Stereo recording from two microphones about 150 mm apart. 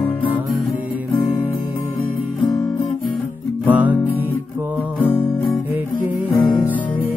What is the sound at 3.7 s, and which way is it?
Music, 10° right (ahead or behind).